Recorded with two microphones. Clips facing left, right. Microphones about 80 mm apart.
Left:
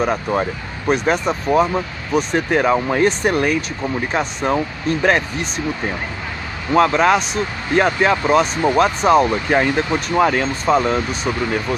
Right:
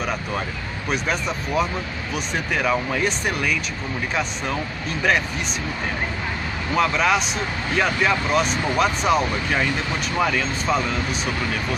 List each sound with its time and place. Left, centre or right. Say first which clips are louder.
0.0 s speech: left 7 dB; left
6.7 s speech: left 6 dB; left